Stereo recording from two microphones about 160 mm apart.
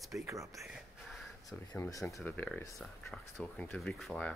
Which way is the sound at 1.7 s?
20° left (ahead or behind).